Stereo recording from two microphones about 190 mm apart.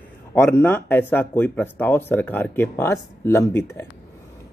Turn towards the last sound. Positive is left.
turn(degrees=15)  # may be behind; listen again after turning